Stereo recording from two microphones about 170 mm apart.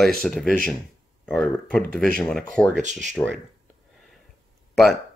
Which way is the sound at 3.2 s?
15° left (ahead or behind).